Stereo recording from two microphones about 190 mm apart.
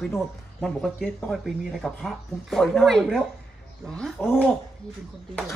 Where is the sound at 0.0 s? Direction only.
5° left (ahead or behind).